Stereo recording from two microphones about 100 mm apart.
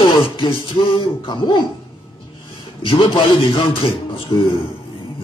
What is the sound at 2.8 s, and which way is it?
A man's voice, 60° left (ahead or behind).